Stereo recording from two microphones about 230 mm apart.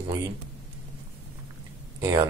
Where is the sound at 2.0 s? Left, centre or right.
Centre.